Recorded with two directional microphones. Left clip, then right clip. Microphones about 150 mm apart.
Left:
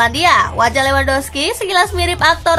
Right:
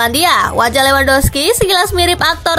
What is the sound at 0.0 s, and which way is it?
A woman's voice, 40° right (ahead or behind).